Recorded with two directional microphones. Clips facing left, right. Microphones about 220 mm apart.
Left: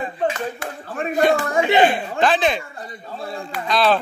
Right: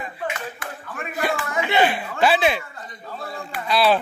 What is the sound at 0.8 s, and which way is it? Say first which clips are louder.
Speech: left 8 dB; 35° left (ahead or behind).